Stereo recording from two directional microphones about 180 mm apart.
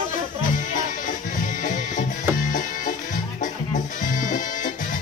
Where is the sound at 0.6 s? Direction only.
45° left (ahead or behind).